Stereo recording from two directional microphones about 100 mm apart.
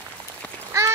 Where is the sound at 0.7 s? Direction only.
30° right (ahead or behind).